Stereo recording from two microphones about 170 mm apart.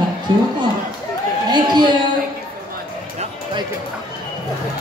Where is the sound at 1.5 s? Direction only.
25° right (ahead or behind).